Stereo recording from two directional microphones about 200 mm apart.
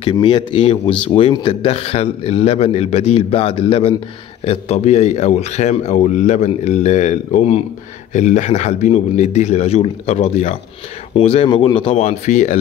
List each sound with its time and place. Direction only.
0.0 s a man's voice: 25° left (ahead or behind)